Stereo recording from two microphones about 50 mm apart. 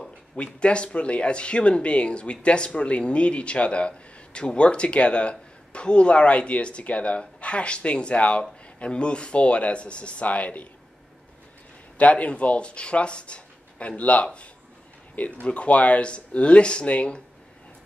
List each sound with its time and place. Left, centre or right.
0.4 s speech: left
12.0 s speech: left